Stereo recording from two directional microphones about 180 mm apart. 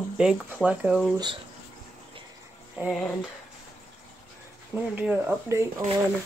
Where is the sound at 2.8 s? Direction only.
5° right (ahead or behind).